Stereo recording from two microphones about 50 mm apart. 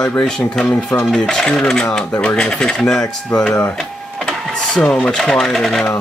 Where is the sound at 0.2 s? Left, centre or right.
Left.